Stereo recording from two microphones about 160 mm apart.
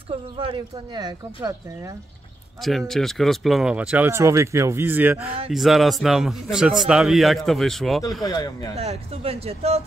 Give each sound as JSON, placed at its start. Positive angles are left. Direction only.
{"t": 0.1, "sound": "speech", "side_deg": -35}
{"t": 2.6, "sound": "a man's voice", "side_deg": 0}
{"t": 8.2, "sound": "speech", "side_deg": 25}
{"t": 8.7, "sound": "speech", "side_deg": -40}